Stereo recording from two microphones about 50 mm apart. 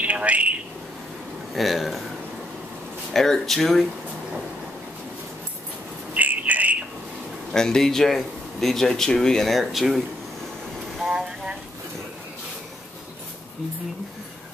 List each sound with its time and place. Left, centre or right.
0.0 s a man's voice: right
1.5 s speech: centre
3.1 s speech: centre
6.1 s a sound: right
7.5 s speech: centre
11.1 s a sound: centre